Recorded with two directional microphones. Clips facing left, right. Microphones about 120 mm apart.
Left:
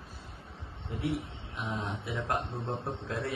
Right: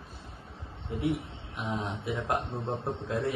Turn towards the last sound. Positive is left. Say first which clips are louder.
# right 3 dB
turn(degrees=-15)  # may be behind; listen again after turning